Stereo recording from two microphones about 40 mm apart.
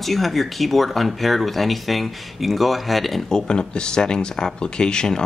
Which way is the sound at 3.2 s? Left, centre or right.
Centre.